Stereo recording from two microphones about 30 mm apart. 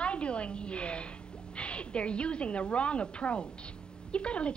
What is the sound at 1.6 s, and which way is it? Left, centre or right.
A woman's voice, left.